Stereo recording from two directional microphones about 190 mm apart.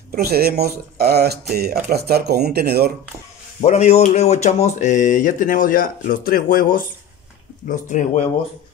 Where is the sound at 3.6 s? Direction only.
35° left (ahead or behind).